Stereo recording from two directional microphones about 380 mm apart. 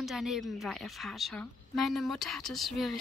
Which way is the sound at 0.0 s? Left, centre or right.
Centre.